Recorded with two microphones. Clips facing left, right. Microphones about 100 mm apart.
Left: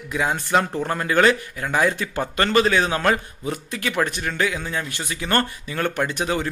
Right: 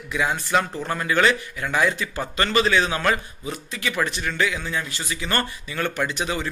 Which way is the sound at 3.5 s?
55° left (ahead or behind).